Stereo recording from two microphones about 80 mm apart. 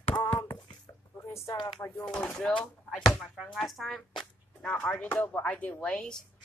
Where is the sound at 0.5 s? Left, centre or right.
Left.